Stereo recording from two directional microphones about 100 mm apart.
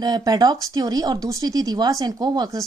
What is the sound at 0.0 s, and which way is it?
Speech, 40° right (ahead or behind).